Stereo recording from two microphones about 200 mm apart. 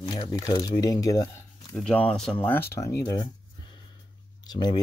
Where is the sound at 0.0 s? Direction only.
20° left (ahead or behind).